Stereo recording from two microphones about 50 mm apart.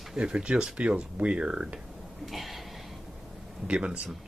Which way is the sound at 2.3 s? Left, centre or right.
Centre.